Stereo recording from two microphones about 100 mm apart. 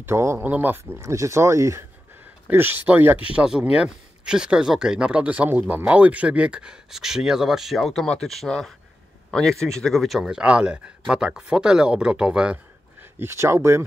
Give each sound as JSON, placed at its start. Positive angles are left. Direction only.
{"t": 0.0, "sound": "speech", "side_deg": -25}
{"t": 1.0, "sound": "speech", "side_deg": -30}
{"t": 13.2, "sound": "speech", "side_deg": -25}